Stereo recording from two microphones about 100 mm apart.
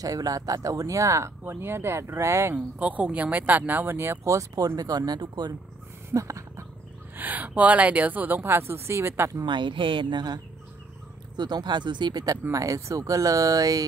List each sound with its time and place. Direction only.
0.0 s speech: 35° right (ahead or behind)
2.5 s speech: 15° right (ahead or behind); by 5.5 s 45° right (ahead or behind)
6.0 s a sound: 30° right (ahead or behind)
7.2 s speech: 15° right (ahead or behind)
9.4 s speech: 50° right (ahead or behind); by 13.8 s 35° right (ahead or behind)